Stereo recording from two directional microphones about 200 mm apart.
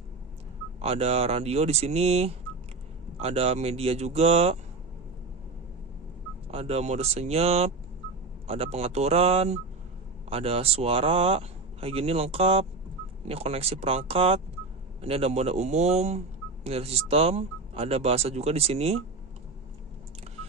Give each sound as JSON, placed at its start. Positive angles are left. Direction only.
{"t": 0.7, "sound": "speech", "side_deg": -30}
{"t": 6.5, "sound": "speech", "side_deg": -30}